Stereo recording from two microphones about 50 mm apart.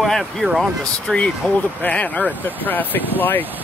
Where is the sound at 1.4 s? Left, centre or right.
Left.